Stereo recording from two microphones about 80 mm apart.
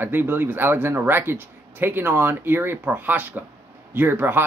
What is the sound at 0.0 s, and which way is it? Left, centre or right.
Speech, right.